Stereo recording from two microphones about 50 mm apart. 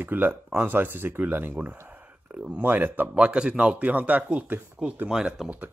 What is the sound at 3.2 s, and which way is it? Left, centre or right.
Speech, right.